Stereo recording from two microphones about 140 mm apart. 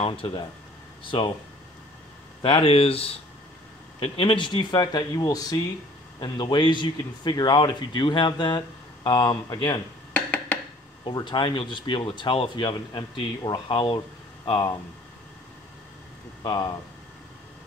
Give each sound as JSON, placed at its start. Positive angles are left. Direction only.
{"t": 0.0, "sound": "speech", "side_deg": 40}
{"t": 2.4, "sound": "speech", "side_deg": 40}
{"t": 10.1, "sound": "a sound", "side_deg": 10}
{"t": 11.1, "sound": "speech", "side_deg": 35}
{"t": 16.4, "sound": "speech", "side_deg": 30}